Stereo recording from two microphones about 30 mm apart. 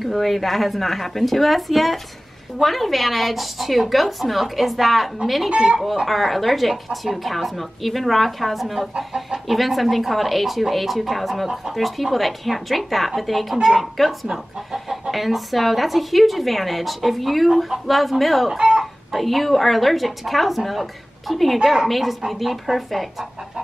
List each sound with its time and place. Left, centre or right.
0.0 s speech: centre
8.9 s speech: right
9.5 s speech: centre